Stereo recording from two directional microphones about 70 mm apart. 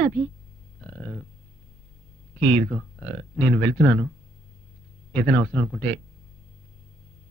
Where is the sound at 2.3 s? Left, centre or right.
Left.